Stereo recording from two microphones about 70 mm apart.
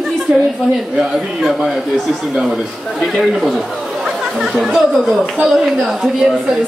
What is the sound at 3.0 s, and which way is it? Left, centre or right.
A woman's voice, centre.